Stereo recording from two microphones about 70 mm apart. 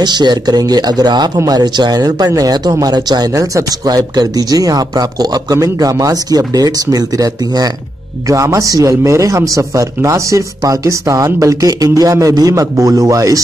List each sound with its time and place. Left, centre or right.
0.0 s speech: right
1.5 s speech: right
8.3 s speech: right